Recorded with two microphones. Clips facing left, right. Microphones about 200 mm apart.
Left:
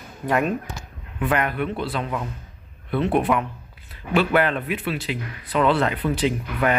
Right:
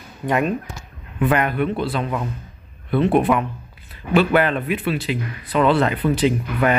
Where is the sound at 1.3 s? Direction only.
25° right (ahead or behind).